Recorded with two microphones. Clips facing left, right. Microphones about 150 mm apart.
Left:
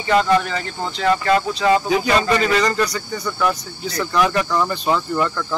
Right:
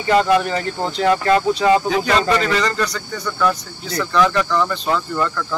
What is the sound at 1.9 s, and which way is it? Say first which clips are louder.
Speech: even; 10° left (ahead or behind).